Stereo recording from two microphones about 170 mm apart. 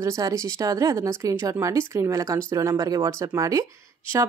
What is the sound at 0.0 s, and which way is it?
Speech, 20° right (ahead or behind).